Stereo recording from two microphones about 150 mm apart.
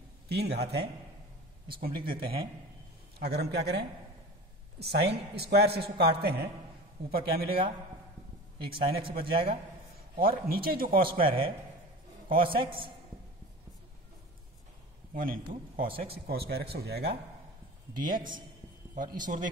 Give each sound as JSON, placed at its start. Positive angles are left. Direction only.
{"t": 0.3, "sound": "a man's voice", "side_deg": -90}
{"t": 1.7, "sound": "speech", "side_deg": -80}
{"t": 2.0, "sound": "a man's voice", "side_deg": -35}
{"t": 3.2, "sound": "a man's voice", "side_deg": -90}
{"t": 7.4, "sound": "a man's voice", "side_deg": -35}
{"t": 10.1, "sound": "speech", "side_deg": -80}
{"t": 11.1, "sound": "a man's voice", "side_deg": -35}
{"t": 15.1, "sound": "a man's voice", "side_deg": -70}
{"t": 16.3, "sound": "a man's voice", "side_deg": -90}
{"t": 17.9, "sound": "a man's voice", "side_deg": -30}
{"t": 18.9, "sound": "a man's voice", "side_deg": -60}